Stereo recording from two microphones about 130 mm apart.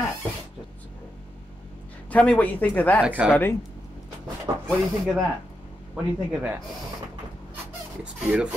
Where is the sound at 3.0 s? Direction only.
10° right (ahead or behind).